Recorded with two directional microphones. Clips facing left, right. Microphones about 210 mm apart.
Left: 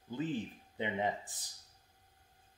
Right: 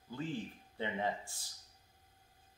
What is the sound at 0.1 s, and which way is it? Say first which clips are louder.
Speech: left 4 dB; 20° left (ahead or behind).